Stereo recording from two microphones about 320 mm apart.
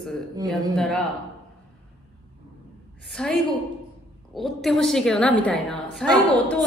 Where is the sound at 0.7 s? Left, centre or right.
Centre.